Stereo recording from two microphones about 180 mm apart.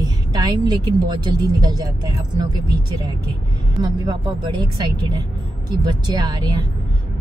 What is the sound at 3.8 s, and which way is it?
A woman's voice, 25° right (ahead or behind).